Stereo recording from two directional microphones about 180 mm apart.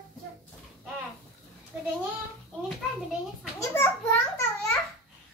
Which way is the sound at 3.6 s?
15° left (ahead or behind).